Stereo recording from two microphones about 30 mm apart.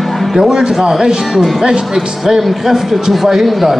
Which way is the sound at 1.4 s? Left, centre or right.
Centre.